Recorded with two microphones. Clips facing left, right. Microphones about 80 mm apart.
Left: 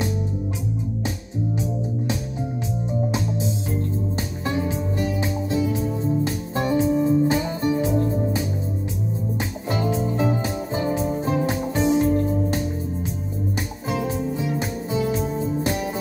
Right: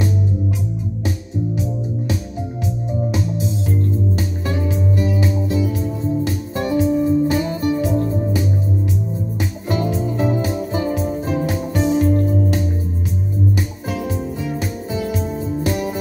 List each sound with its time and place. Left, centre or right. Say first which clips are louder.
4.5 s music: right 2 dB; left
9.7 s music: right 2 dB; left
13.8 s music: left 3 dB; left